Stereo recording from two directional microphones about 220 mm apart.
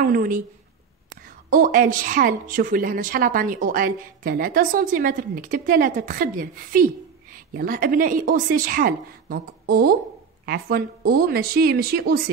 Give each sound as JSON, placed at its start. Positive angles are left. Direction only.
{"t": 0.0, "sound": "a woman's voice", "side_deg": -40}
{"t": 1.5, "sound": "a woman's voice", "side_deg": -40}